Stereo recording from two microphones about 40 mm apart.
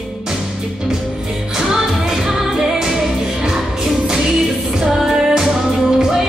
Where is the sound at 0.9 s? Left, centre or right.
Centre.